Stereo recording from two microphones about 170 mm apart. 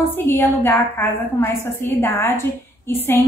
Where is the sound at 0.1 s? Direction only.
15° left (ahead or behind).